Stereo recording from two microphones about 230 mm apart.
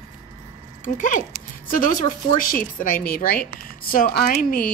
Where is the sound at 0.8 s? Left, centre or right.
Left.